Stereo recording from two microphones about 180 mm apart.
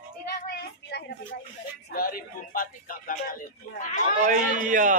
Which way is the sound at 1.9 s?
55° left (ahead or behind).